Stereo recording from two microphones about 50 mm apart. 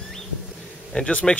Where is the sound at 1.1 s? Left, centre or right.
Left.